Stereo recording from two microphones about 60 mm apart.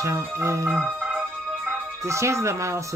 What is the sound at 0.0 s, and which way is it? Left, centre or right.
Speech, right.